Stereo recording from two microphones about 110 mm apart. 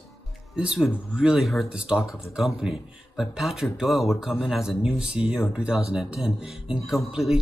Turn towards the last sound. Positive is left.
turn(degrees=-5)  # may be behind; listen again after turning